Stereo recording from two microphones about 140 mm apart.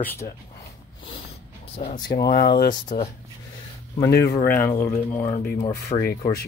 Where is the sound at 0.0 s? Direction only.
15° left (ahead or behind).